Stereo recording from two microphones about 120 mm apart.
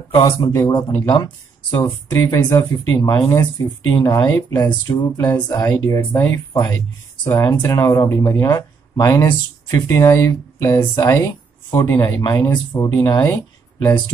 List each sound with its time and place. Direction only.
0.2 s a man's voice: 30° left (ahead or behind)
1.8 s a man's voice: 25° left (ahead or behind)